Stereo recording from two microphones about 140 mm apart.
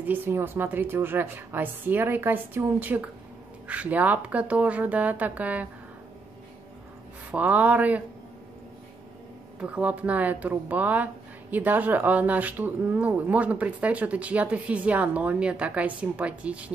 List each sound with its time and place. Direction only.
0.0 s speech: 10° right (ahead or behind)
7.2 s speech: 10° right (ahead or behind)
9.6 s speech: 10° right (ahead or behind)